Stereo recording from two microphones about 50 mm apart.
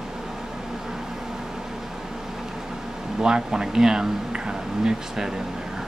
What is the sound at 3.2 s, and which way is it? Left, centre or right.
Speech, centre.